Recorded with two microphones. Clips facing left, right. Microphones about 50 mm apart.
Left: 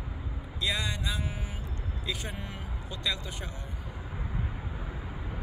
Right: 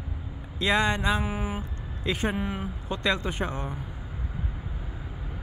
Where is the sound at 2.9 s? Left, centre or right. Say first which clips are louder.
Right 8 dB; right.